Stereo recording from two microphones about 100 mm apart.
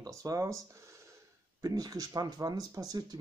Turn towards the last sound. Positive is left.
turn(degrees=-40)  # may be behind; listen again after turning